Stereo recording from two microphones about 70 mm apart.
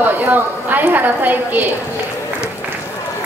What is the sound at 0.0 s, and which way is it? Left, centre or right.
A woman's voice, right.